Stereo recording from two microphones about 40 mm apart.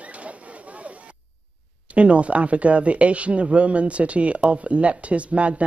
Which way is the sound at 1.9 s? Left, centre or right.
Right.